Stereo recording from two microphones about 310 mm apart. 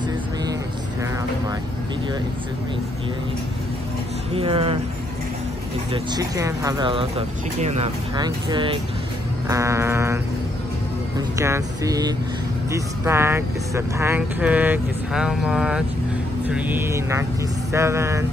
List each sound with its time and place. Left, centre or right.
4.3 s speech: centre
6.1 s speech: centre